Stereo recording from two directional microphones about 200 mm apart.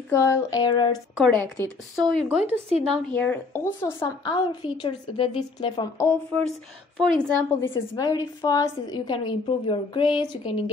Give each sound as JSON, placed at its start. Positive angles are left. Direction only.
{"t": 0.1, "sound": "a woman's voice", "side_deg": 15}
{"t": 1.1, "sound": "a woman's voice", "side_deg": 0}
{"t": 2.9, "sound": "a woman's voice", "side_deg": 5}
{"t": 4.8, "sound": "a woman's voice", "side_deg": 25}
{"t": 7.9, "sound": "a woman's voice", "side_deg": 20}